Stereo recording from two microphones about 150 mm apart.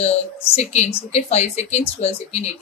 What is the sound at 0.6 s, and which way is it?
Speech, 45° left (ahead or behind).